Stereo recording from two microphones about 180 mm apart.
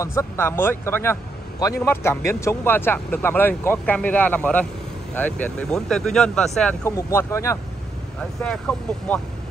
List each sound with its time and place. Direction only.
0.0 s speech: 15° left (ahead or behind)
6.8 s speech: 15° left (ahead or behind)